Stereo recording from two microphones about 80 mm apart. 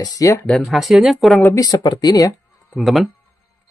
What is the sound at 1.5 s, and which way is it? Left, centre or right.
Speech, left.